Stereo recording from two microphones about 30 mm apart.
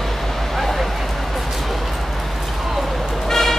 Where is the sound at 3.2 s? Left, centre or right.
Centre.